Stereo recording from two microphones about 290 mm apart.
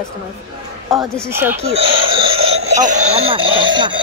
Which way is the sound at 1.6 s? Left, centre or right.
Centre.